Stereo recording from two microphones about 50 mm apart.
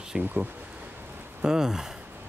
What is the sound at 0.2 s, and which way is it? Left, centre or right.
Speech, right.